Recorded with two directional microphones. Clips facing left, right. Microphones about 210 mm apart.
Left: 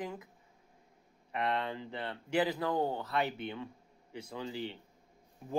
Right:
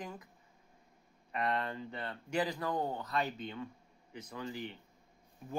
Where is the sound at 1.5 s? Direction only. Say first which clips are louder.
Left 1 dB; 20° left (ahead or behind).